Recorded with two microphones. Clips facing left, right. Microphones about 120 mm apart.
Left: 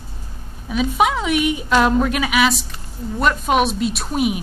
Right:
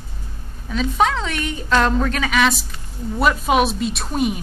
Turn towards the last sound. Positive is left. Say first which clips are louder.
# left 1 dB
turn(degrees=5)  # may be behind; listen again after turning